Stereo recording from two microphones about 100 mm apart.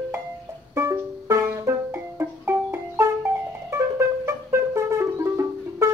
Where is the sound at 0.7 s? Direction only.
30° right (ahead or behind).